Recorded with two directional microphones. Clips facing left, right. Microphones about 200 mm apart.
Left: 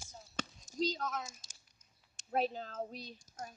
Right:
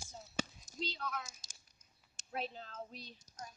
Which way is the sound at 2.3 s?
40° left (ahead or behind).